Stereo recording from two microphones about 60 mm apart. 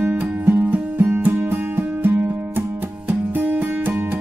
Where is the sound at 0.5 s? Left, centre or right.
Right.